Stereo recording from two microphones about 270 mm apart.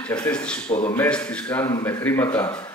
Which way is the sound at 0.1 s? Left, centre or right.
Centre.